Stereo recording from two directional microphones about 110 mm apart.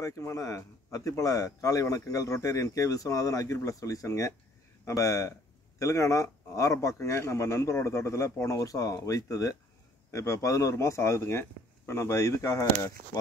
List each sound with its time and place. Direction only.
0.0 s speech: 30° left (ahead or behind)